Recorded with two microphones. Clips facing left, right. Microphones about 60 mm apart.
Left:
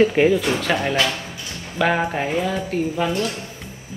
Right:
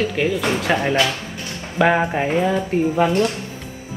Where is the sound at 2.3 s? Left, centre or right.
Right.